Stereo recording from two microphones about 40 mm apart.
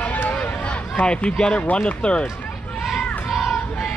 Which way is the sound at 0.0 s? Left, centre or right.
Left.